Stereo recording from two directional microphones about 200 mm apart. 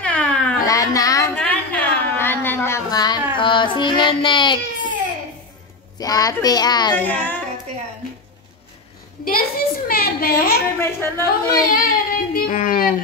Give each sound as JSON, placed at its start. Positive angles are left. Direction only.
{"t": 0.0, "sound": "cat", "side_deg": 5}
{"t": 0.7, "sound": "a sound", "side_deg": 15}
{"t": 3.3, "sound": "child singing", "side_deg": 25}
{"t": 5.9, "sound": "speech", "side_deg": 20}
{"t": 7.0, "sound": "a woman's voice", "side_deg": 10}
{"t": 9.2, "sound": "a sound", "side_deg": 50}
{"t": 10.8, "sound": "a woman's voice", "side_deg": 10}
{"t": 11.6, "sound": "child singing", "side_deg": 45}